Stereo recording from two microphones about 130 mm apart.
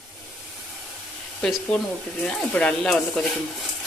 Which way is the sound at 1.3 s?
10° left (ahead or behind).